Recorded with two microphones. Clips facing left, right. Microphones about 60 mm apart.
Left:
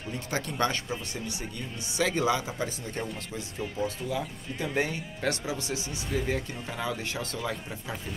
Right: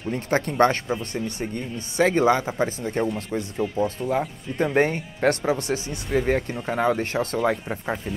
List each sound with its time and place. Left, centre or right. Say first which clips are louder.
0.1 s speech: right 9 dB; right